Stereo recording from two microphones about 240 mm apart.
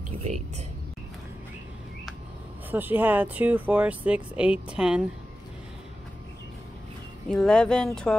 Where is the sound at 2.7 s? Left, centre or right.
Centre.